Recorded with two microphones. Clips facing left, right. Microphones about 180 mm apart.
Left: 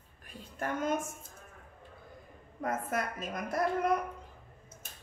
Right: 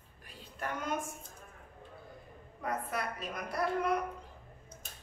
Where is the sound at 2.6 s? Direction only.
45° left (ahead or behind).